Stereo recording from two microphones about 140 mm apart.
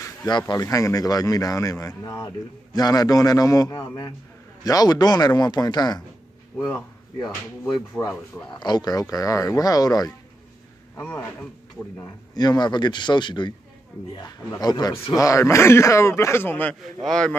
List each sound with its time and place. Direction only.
0.0 s a man's voice: 30° left (ahead or behind)
7.2 s speech: 5° left (ahead or behind)
8.5 s a man's voice: 30° left (ahead or behind)
11.0 s a man's voice: 10° left (ahead or behind)
12.4 s a man's voice: 30° left (ahead or behind); by 17.4 s 5° left (ahead or behind)